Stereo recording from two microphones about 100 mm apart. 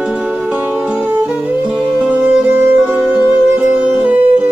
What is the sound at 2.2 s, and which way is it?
Music, 20° right (ahead or behind).